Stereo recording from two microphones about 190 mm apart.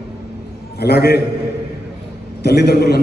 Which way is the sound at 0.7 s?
60° left (ahead or behind).